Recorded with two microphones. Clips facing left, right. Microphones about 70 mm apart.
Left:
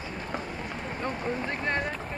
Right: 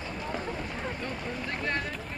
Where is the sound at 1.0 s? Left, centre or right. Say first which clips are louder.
Left 4 dB; left.